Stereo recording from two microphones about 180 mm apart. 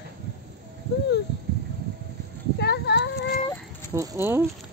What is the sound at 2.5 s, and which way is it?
Child singing, 65° left (ahead or behind).